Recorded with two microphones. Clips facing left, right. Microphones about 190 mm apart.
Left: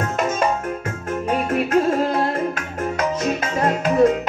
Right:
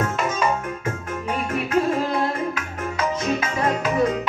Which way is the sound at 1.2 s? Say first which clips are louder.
Left 5 dB; 45° left (ahead or behind).